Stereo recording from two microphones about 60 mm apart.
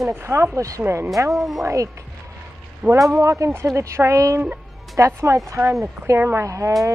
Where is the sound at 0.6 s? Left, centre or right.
Right.